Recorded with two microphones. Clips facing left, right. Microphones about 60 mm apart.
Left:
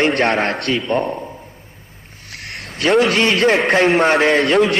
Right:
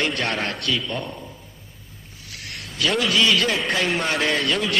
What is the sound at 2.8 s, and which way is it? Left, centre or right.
A man's voice, left.